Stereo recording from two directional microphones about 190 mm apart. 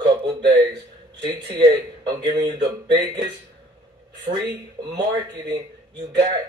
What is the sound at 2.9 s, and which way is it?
Speech, 60° right (ahead or behind).